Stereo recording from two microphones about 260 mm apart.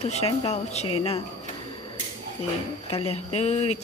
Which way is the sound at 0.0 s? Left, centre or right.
Left.